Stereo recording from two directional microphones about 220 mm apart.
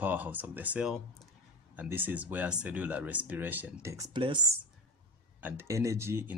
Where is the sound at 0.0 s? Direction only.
10° right (ahead or behind).